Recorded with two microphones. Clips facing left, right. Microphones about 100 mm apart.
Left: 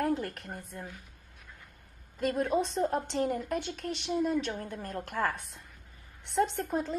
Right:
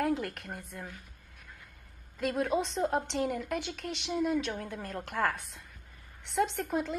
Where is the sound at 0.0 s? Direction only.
40° left (ahead or behind).